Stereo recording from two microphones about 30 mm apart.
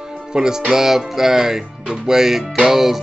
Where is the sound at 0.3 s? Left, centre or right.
Right.